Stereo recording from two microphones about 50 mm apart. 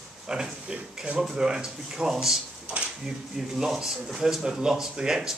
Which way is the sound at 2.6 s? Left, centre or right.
Right.